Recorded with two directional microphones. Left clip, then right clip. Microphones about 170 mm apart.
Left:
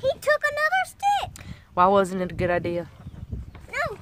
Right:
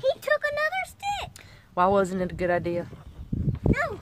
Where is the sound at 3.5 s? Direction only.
50° left (ahead or behind).